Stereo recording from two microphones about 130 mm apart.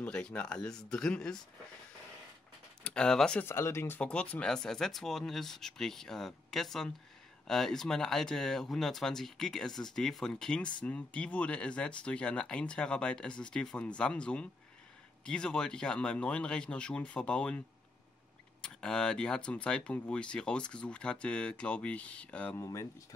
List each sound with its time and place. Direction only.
0.0 s speech: 10° left (ahead or behind)
2.8 s speech: 5° left (ahead or behind)
3.4 s speech: 20° left (ahead or behind)
18.6 s speech: 5° left (ahead or behind)
22.6 s speech: 25° left (ahead or behind)